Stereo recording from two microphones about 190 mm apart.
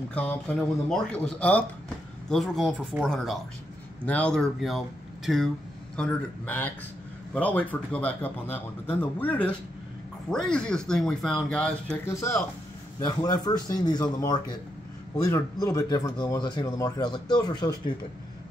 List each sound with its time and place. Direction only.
0.1 s speech: 10° left (ahead or behind)
12.1 s speech: 15° left (ahead or behind)